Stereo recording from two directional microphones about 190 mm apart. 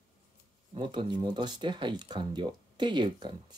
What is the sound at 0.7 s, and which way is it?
Speech, 25° right (ahead or behind).